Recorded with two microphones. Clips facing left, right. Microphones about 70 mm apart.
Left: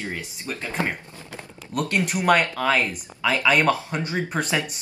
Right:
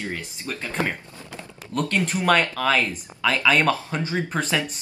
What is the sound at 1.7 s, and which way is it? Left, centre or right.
Speech, centre.